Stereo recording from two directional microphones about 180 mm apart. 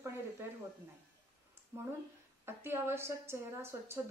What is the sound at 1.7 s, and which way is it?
A woman's voice, 15° right (ahead or behind).